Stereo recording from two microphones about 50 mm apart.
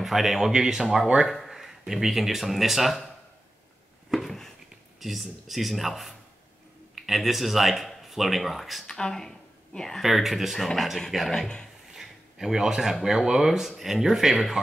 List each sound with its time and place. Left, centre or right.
0.0 s speech: centre
4.1 s a sound: centre
5.0 s speech: centre
8.8 s speech: centre
10.0 s speech: centre
11.9 s a sound: centre
13.0 s speech: centre